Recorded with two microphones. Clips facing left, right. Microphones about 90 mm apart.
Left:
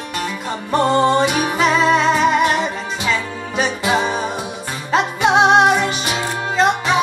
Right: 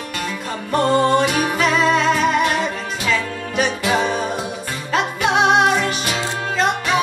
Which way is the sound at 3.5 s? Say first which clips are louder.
Left 1 dB; 25° left (ahead or behind).